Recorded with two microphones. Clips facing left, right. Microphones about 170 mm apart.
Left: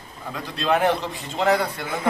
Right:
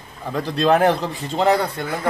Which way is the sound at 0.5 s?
40° right (ahead or behind).